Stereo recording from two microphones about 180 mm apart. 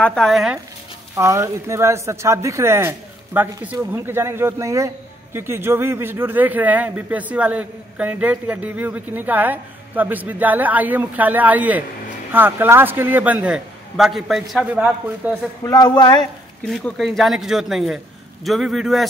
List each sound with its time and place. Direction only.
0.0 s a man's voice: 5° left (ahead or behind)
1.1 s speech: 15° right (ahead or behind)
15.6 s a man's voice: 20° left (ahead or behind)
16.6 s a man's voice: centre (ahead or behind)